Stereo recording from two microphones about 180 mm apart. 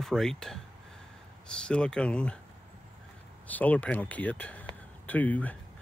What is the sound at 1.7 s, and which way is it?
Speech, 5° left (ahead or behind).